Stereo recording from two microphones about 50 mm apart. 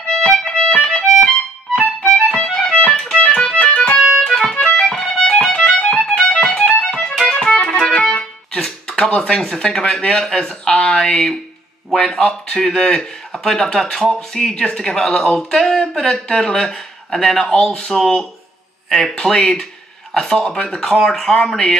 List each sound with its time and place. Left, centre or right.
0.7 s music: centre
3.2 s music: centre
4.3 s music: centre
8.2 s a man's voice: centre